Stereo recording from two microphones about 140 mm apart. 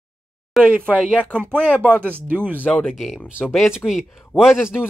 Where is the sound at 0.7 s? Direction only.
10° right (ahead or behind).